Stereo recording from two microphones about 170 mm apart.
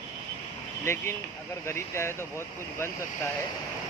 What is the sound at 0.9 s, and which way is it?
Speech, 15° left (ahead or behind).